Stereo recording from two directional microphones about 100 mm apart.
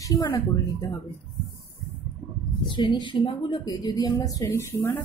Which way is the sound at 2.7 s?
50° left (ahead or behind).